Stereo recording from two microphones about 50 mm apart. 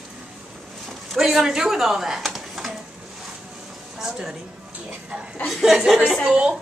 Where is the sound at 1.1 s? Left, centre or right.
Centre.